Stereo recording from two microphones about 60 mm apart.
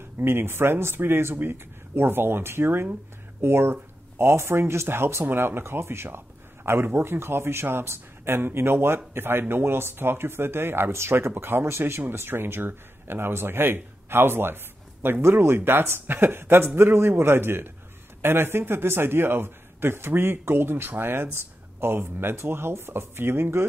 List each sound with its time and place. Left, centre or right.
0.2 s a man's voice: right